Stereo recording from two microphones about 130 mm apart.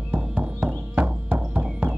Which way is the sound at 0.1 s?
10° right (ahead or behind).